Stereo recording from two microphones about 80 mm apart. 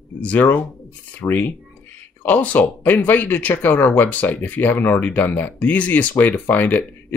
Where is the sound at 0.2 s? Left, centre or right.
Left.